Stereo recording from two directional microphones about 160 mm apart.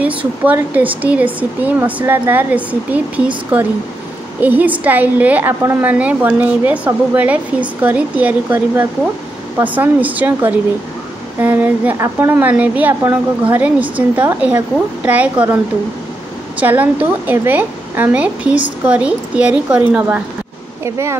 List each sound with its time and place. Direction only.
0.4 s a woman's voice: 10° right (ahead or behind)